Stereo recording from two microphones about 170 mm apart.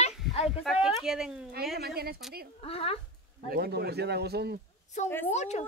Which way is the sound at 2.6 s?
35° left (ahead or behind).